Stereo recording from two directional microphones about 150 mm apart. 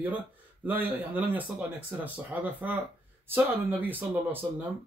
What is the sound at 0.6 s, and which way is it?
Speech, 10° right (ahead or behind).